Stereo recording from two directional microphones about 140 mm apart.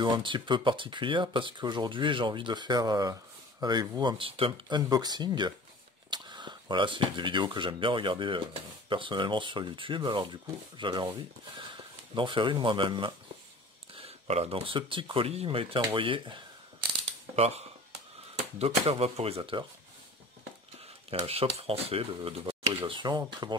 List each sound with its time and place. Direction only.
0.0 s speech: 35° right (ahead or behind)
13.9 s speech: 45° right (ahead or behind)
17.4 s speech: 50° right (ahead or behind)
21.1 s speech: 45° right (ahead or behind)